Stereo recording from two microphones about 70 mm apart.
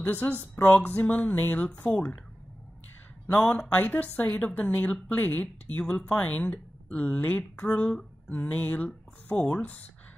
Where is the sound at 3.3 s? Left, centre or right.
Left.